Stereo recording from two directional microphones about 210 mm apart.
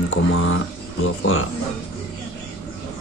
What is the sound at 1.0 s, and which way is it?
Music, 70° left (ahead or behind).